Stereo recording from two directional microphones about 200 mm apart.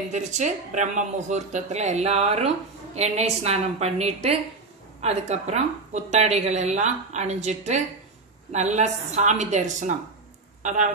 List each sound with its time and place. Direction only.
0.1 s speech: 35° right (ahead or behind)